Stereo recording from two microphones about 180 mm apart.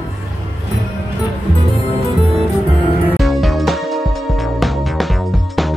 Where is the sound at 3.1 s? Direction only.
Centre (ahead or behind).